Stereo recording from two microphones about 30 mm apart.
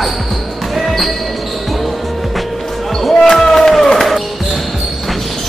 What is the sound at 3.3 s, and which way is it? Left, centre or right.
Chop, centre.